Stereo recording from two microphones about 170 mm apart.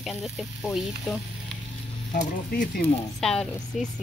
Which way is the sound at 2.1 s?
50° left (ahead or behind).